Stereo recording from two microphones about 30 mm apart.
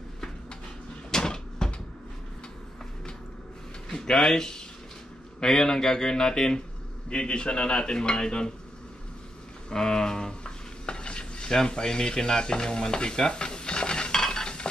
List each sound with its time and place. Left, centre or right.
1.1 s a sound: left
3.9 s speech: centre
7.2 s speech: left
9.7 s stir: centre
11.5 s speech: left
13.3 s dishes: left
14.2 s a sound: left